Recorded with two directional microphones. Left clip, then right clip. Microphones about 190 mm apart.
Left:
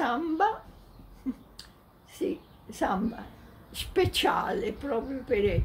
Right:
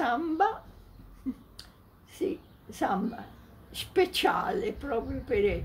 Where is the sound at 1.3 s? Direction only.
20° left (ahead or behind).